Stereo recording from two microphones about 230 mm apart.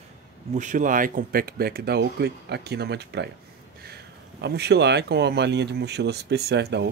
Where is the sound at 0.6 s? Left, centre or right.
Right.